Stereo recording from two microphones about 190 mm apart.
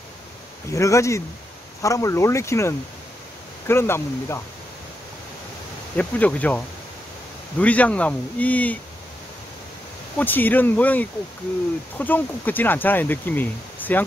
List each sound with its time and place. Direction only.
0.7 s speech: 15° left (ahead or behind)
5.9 s speech: 10° left (ahead or behind)
10.1 s speech: 10° left (ahead or behind)